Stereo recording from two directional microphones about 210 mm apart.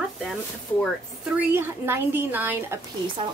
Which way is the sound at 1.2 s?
10° right (ahead or behind).